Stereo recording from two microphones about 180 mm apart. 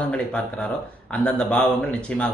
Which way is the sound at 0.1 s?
5° left (ahead or behind).